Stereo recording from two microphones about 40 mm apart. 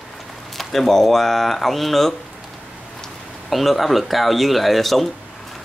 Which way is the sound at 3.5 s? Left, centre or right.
Centre.